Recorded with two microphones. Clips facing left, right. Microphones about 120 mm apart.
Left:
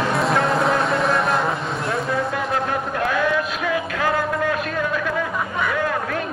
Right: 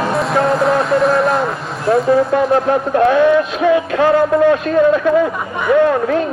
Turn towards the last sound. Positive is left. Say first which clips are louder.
# right 11 dB
turn(degrees=-30)  # may be behind; listen again after turning